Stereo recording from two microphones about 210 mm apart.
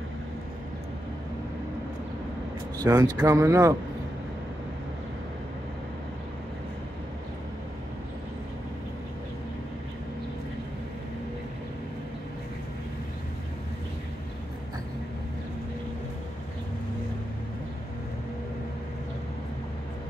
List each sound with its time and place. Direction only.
2.8 s speech: 20° right (ahead or behind)